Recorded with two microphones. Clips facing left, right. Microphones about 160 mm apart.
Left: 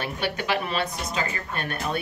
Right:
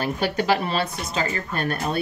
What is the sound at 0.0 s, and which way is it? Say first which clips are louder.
A woman's voice: right 5 dB; 35° right (ahead or behind).